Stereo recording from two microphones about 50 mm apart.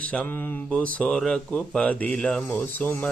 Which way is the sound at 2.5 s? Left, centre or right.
Left.